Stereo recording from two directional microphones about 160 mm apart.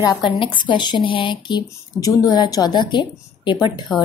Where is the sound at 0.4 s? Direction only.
30° left (ahead or behind).